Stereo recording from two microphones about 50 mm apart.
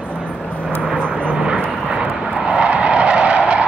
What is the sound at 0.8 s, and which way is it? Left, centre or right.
Vehicle, centre.